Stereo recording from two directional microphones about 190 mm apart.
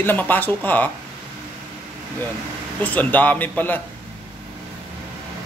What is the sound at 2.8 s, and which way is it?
Speech, 10° left (ahead or behind).